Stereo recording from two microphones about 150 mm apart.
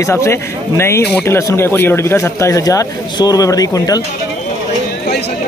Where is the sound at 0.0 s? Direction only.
20° left (ahead or behind).